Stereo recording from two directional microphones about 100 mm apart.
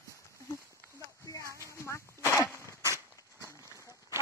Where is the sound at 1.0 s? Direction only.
30° left (ahead or behind).